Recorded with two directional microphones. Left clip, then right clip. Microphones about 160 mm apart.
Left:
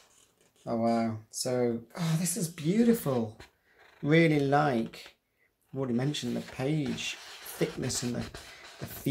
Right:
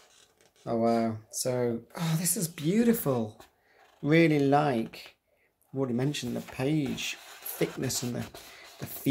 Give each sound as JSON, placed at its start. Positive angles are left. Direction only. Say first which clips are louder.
{"t": 0.7, "sound": "speech", "louder": "right 2 dB", "side_deg": -35}